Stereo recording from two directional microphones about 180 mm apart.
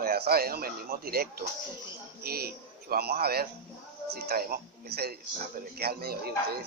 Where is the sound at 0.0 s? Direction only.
60° right (ahead or behind).